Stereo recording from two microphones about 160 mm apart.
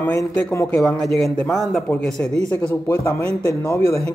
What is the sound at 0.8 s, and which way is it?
Speech, 5° left (ahead or behind).